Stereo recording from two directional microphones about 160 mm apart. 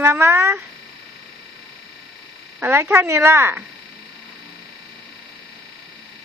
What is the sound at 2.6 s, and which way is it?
Speech, 15° right (ahead or behind).